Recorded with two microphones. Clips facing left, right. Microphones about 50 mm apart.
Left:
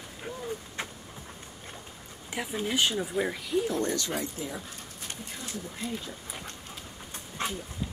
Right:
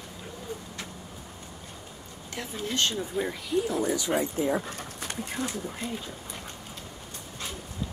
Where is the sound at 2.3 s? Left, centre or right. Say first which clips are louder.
Left 2 dB; centre.